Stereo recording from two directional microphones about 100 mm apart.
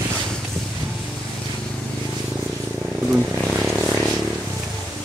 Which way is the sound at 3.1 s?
15° right (ahead or behind).